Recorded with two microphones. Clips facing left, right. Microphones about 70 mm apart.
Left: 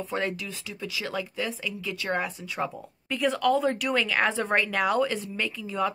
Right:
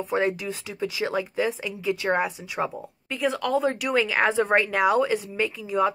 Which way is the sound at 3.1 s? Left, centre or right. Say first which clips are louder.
Left 1 dB; centre.